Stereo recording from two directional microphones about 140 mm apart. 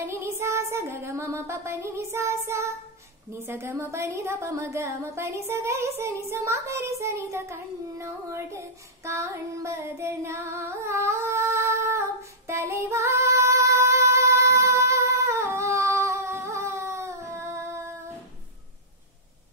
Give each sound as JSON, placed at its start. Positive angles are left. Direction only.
{"t": 0.0, "sound": "child singing", "side_deg": -15}
{"t": 3.3, "sound": "a woman's voice", "side_deg": -15}